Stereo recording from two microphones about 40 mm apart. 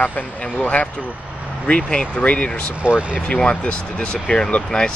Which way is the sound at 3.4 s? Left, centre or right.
Left.